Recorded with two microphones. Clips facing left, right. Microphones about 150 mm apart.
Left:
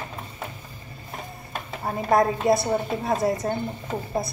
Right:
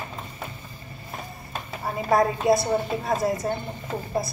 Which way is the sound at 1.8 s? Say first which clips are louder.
Left 1 dB; centre (ahead or behind).